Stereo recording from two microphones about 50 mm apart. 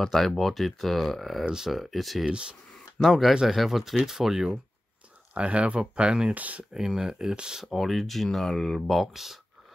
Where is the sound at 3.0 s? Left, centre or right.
Centre.